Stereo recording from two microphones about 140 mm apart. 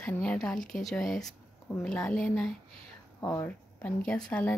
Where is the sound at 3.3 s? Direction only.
20° left (ahead or behind).